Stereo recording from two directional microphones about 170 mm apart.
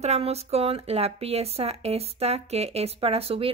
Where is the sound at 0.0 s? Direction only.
40° right (ahead or behind).